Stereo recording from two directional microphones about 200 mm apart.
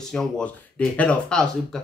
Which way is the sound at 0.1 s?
5° left (ahead or behind).